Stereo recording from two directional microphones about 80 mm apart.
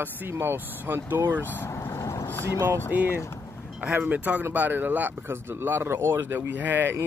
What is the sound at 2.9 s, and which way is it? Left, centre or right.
Speech, right.